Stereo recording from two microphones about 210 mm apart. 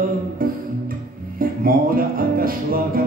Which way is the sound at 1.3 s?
45° right (ahead or behind).